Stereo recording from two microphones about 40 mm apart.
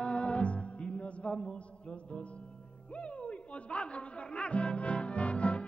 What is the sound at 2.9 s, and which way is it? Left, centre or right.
Music, left.